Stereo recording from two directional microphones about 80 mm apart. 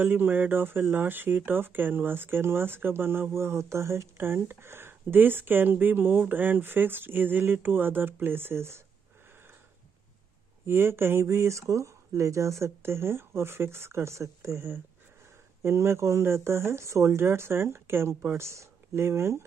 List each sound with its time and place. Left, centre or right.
0.0 s speech: right
10.7 s speech: right